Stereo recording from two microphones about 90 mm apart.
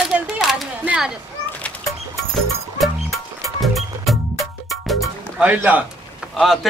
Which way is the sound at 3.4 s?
Centre (ahead or behind).